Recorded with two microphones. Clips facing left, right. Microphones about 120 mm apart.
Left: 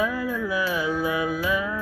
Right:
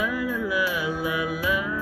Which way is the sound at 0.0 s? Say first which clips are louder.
Left 1 dB; 30° left (ahead or behind).